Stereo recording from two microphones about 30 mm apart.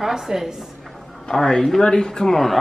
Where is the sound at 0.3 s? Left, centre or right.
Right.